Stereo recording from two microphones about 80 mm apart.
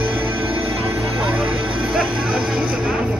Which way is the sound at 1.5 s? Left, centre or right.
Right.